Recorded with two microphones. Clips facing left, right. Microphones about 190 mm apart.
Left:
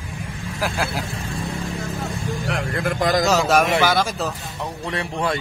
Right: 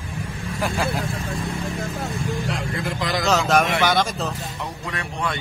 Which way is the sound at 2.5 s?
60° left (ahead or behind).